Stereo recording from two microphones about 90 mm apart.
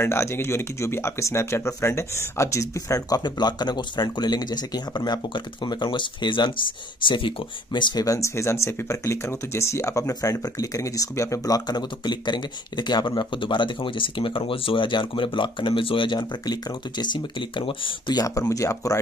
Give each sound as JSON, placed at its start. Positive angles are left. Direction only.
{"t": 0.0, "sound": "speech", "side_deg": 30}
{"t": 3.3, "sound": "speech", "side_deg": 50}
{"t": 8.0, "sound": "speech", "side_deg": 35}
{"t": 17.0, "sound": "speech", "side_deg": 60}
{"t": 18.1, "sound": "speech", "side_deg": 40}